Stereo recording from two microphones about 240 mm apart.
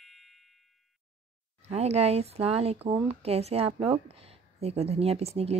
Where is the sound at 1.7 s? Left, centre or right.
Right.